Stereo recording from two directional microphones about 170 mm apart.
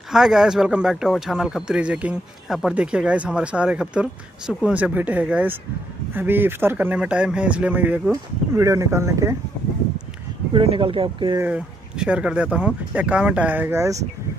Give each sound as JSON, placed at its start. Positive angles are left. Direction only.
{"t": 0.1, "sound": "speech", "side_deg": -5}
{"t": 10.5, "sound": "speech", "side_deg": -30}
{"t": 11.4, "sound": "speech", "side_deg": -5}